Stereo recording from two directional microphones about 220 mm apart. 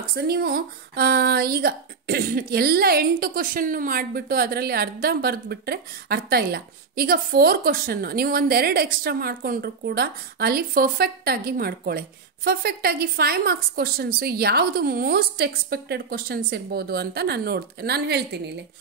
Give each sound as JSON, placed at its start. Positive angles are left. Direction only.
{"t": 0.0, "sound": "speech", "side_deg": -45}